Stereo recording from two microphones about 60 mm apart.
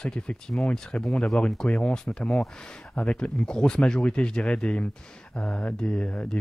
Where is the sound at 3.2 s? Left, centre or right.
Centre.